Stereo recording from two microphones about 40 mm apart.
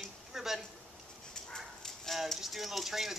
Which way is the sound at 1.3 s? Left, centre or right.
Left.